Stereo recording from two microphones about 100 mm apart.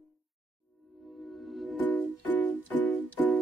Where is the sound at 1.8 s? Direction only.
15° left (ahead or behind).